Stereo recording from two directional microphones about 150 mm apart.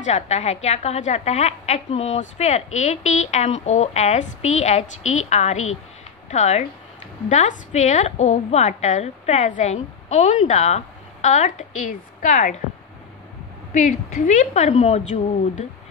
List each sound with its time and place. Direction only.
0.0 s a woman's voice: 50° left (ahead or behind)
13.7 s a woman's voice: 60° left (ahead or behind)